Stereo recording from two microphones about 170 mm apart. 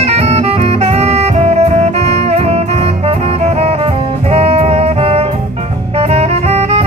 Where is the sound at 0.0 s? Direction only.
35° right (ahead or behind).